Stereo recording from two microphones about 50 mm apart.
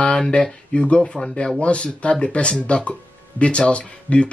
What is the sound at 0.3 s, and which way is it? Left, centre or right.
Speech, left.